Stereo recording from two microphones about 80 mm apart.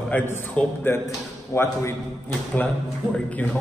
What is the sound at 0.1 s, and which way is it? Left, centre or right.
A man's voice, left.